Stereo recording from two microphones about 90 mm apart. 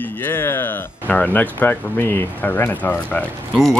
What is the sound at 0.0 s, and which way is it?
Speech, 25° left (ahead or behind).